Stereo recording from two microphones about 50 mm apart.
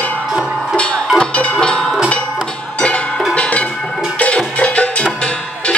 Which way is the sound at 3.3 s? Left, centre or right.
Left.